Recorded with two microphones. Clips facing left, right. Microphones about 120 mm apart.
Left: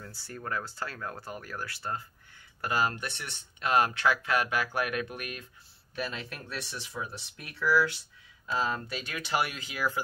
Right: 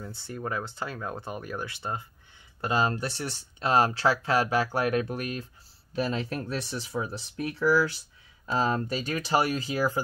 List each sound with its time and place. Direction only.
0.1 s speech: 20° right (ahead or behind); by 10.0 s 35° right (ahead or behind)